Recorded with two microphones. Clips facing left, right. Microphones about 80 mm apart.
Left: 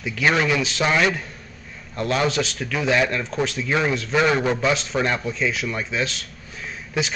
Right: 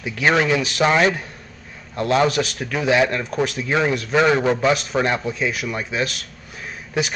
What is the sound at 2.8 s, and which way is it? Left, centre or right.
Speech, right.